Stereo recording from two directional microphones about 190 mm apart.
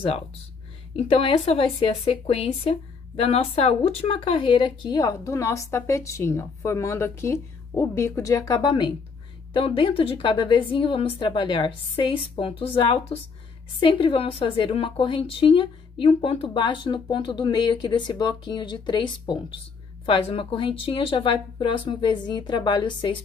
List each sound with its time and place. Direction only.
0.9 s a woman's voice: 30° left (ahead or behind)